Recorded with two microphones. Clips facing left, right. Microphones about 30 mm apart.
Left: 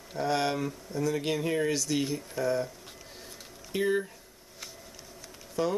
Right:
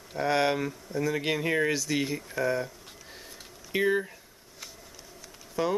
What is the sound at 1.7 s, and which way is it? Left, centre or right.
Speech, centre.